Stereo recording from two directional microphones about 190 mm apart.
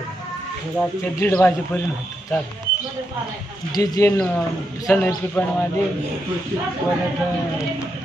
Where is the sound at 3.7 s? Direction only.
20° left (ahead or behind).